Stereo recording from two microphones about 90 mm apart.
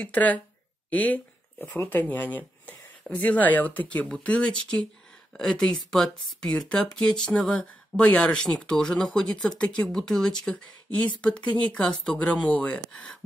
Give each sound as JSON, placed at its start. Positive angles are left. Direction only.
{"t": 0.0, "sound": "speech", "side_deg": 15}